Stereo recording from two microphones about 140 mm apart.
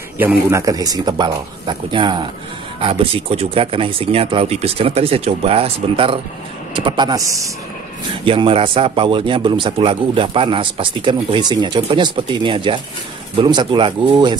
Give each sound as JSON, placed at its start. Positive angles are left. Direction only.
{"t": 0.5, "sound": "a man's voice", "side_deg": -25}
{"t": 8.3, "sound": "a man's voice", "side_deg": -40}